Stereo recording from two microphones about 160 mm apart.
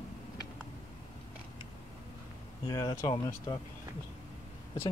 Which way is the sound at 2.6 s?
25° left (ahead or behind).